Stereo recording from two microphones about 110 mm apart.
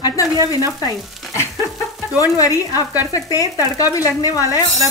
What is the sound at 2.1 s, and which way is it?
Speech, 30° left (ahead or behind).